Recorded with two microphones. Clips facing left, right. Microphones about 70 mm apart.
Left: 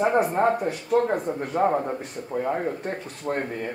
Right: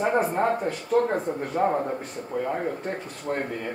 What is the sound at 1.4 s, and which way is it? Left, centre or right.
Speech, left.